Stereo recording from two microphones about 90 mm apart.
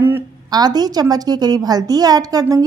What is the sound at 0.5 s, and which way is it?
A woman's voice, 50° right (ahead or behind).